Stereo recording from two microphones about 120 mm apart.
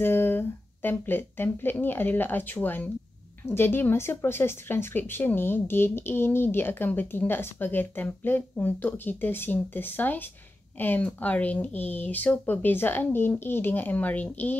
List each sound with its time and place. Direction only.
0.0 s speech: 20° left (ahead or behind)